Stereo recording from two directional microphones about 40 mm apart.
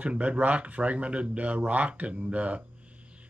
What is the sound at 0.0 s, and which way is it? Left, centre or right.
Speech, right.